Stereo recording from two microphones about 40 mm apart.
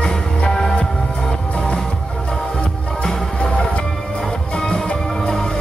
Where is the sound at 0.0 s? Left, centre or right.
Centre.